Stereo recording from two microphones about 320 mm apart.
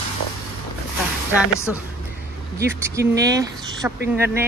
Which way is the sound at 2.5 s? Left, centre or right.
Centre.